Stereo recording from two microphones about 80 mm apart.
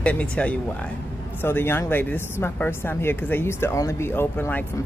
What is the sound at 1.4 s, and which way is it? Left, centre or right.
Speech, left.